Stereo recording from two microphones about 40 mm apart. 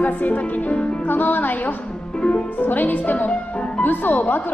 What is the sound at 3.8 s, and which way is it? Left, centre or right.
Speech, left.